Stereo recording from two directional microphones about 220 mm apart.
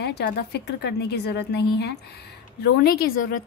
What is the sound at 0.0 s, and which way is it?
A woman's voice, 50° left (ahead or behind).